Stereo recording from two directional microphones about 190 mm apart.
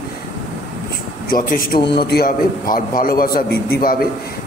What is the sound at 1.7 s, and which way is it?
A man's voice, 50° left (ahead or behind).